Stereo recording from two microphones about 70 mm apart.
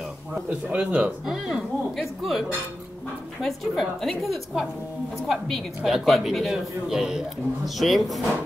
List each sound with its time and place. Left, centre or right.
0.3 s speech: centre
1.2 s a man's voice: centre
3.4 s a man's voice: centre
5.9 s a man's voice: centre